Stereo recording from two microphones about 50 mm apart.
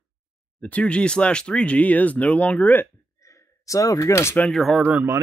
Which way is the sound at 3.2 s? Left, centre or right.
Left.